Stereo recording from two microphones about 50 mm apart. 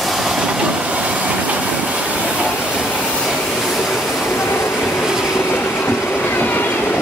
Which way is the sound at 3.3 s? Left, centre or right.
Centre.